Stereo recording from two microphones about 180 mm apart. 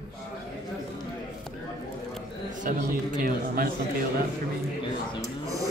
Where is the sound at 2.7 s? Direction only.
50° right (ahead or behind).